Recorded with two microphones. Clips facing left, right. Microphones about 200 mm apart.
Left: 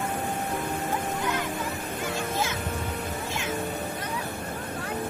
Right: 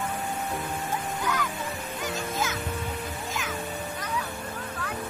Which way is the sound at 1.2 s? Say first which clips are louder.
Left 1 dB; 25° left (ahead or behind).